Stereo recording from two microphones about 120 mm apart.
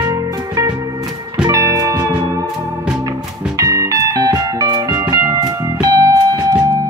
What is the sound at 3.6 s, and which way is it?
Music, 30° right (ahead or behind).